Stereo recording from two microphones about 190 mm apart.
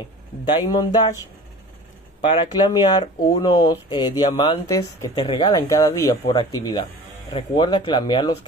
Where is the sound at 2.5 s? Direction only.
20° left (ahead or behind).